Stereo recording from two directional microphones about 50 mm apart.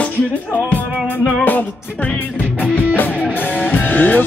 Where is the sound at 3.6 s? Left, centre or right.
Left.